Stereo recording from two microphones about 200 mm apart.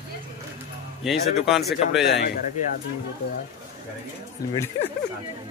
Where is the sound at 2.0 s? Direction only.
55° left (ahead or behind).